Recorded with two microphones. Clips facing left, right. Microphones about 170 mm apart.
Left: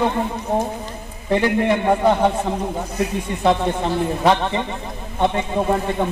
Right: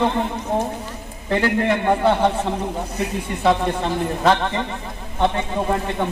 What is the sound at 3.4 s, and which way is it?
Speech, centre (ahead or behind).